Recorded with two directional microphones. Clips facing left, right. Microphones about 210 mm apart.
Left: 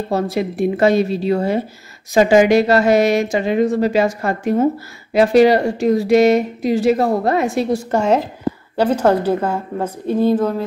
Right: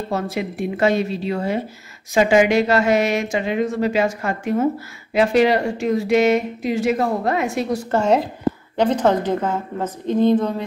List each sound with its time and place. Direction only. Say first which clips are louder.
0.1 s speech: left 6 dB; 35° left (ahead or behind)
7.9 s a woman's voice: right 1 dB; 10° left (ahead or behind)